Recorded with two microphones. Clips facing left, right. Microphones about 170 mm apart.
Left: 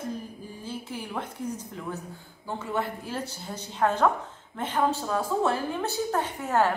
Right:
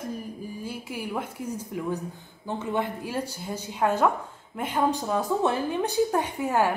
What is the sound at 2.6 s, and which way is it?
A woman's voice, 20° right (ahead or behind).